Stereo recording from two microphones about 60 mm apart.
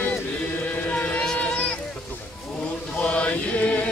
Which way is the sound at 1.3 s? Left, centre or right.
Left.